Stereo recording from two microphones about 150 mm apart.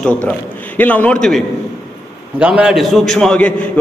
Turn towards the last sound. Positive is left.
turn(degrees=5)  # may be behind; listen again after turning